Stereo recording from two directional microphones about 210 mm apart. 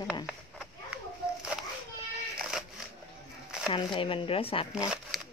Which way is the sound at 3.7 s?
25° left (ahead or behind).